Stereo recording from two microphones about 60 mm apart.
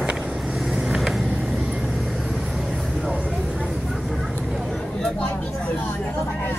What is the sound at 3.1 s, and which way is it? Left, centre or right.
Vehicle, right.